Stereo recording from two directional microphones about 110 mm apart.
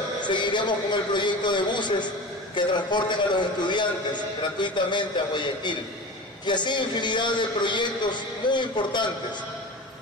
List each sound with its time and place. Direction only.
0.2 s a man's voice: 45° left (ahead or behind)